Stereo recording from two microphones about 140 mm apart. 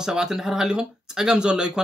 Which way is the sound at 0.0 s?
5° right (ahead or behind).